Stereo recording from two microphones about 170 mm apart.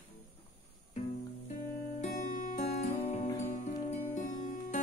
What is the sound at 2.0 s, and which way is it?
Music, 50° left (ahead or behind).